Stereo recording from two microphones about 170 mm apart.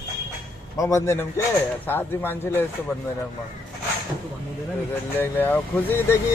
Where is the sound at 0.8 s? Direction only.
15° left (ahead or behind).